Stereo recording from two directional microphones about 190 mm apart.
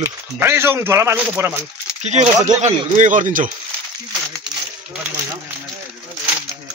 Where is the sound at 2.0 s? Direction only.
40° right (ahead or behind).